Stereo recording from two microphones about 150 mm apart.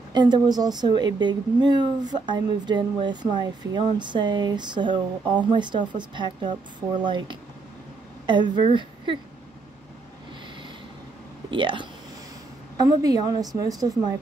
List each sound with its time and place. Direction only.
0.1 s a woman's voice: 30° right (ahead or behind)
11.5 s a woman's voice: 35° right (ahead or behind)